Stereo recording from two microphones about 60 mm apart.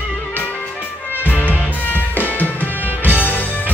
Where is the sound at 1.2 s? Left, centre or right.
Left.